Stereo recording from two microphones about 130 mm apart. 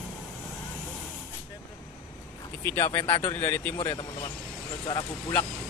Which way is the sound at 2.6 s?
20° left (ahead or behind).